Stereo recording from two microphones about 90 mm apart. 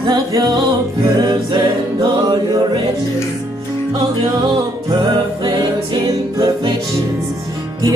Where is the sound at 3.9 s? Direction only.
50° right (ahead or behind).